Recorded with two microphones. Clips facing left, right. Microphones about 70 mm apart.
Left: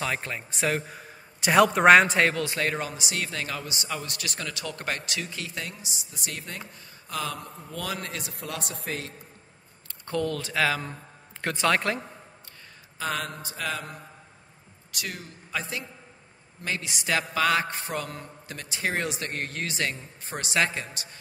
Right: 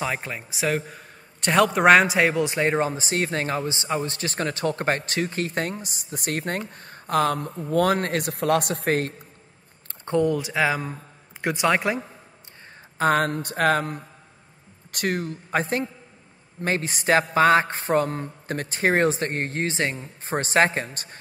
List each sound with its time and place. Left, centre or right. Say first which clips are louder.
0.0 s a man's voice: right 2 dB; centre
2.3 s a man's voice: right 6 dB; right
10.0 s speech: right 7 dB; centre
13.0 s a man's voice: right 10 dB; right